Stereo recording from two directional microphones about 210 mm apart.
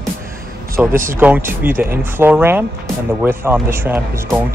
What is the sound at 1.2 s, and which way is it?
Speech, 10° right (ahead or behind).